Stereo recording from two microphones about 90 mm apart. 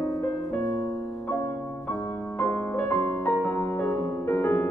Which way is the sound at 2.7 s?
25° left (ahead or behind).